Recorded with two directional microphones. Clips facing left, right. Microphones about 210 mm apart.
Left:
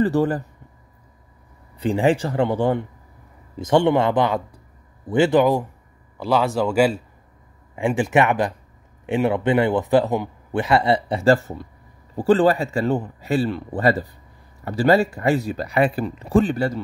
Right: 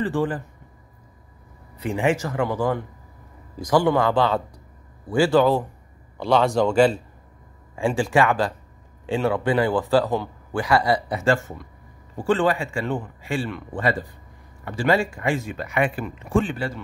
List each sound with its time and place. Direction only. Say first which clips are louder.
0.0 s speech: left 5 dB; 40° left (ahead or behind)
1.8 s a man's voice: left 4 dB; 30° left (ahead or behind); by 7.0 s 10° left (ahead or behind)
7.7 s speech: left 2 dB; 20° left (ahead or behind); by 16.8 s 40° left (ahead or behind)